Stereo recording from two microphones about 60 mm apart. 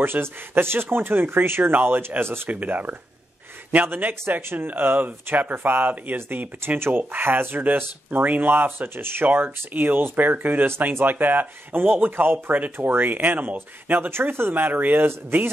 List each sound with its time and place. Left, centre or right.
0.0 s speech: right
2.5 s speech: right
3.8 s speech: right
15.0 s speech: right